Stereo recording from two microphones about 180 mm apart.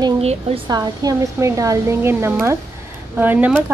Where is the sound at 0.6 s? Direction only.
20° right (ahead or behind).